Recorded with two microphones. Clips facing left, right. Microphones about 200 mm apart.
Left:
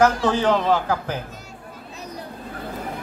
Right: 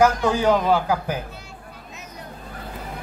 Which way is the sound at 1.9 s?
35° left (ahead or behind).